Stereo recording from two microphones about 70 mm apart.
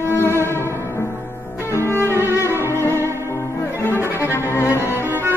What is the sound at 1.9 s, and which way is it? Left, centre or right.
Cello, left.